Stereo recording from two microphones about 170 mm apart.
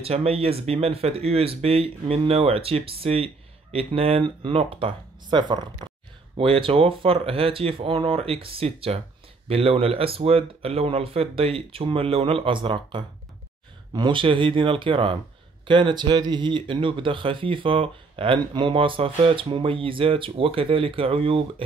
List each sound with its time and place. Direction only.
0.0 s speech: 35° right (ahead or behind)